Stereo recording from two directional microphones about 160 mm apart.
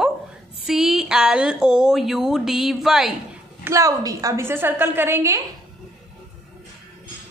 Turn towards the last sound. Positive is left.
turn(degrees=-15)  # may be behind; listen again after turning